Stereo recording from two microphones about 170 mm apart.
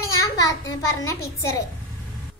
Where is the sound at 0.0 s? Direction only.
20° left (ahead or behind).